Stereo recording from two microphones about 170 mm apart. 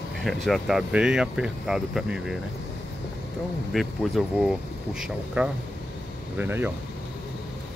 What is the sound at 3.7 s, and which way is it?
Speech, centre (ahead or behind).